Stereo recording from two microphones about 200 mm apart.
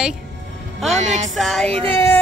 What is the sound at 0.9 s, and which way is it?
Music, 35° right (ahead or behind).